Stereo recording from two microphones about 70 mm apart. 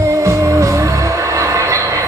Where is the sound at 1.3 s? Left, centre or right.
Right.